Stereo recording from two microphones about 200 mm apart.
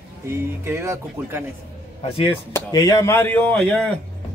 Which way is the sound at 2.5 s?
20° left (ahead or behind).